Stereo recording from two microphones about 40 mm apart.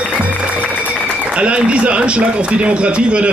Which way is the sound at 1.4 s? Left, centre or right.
Right.